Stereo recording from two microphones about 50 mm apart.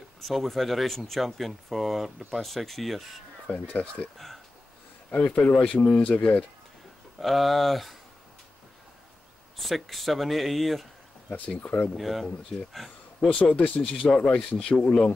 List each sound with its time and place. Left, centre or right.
0.2 s speech: centre
3.5 s speech: left
5.1 s speech: left
6.0 s speech: left
7.2 s speech: centre
9.6 s speech: centre
11.2 s speech: left
12.0 s speech: centre
12.7 s a sound: centre
13.3 s speech: left